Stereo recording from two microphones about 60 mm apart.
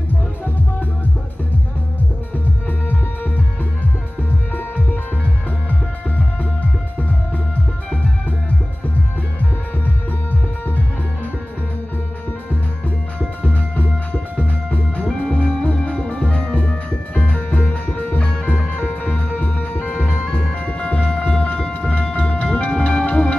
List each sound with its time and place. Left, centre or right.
2.9 s music: left
13.5 s music: left